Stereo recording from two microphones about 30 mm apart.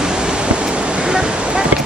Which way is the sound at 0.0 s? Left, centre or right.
Right.